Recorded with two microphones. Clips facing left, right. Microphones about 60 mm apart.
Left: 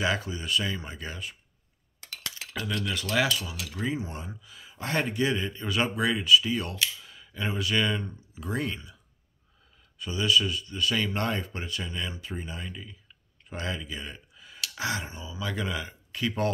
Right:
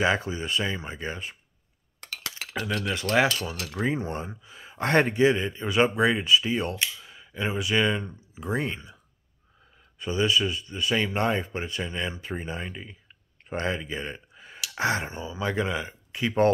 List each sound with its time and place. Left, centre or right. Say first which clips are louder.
0.0 s speech: right 4 dB; right
2.0 s cutlery: right 3 dB; right
2.6 s speech: right 2 dB; right
3.3 s speech: right 2 dB; right
4.7 s speech: right 7 dB; right
5.1 s speech: right 6 dB; right
9.9 s speech: right 2 dB; right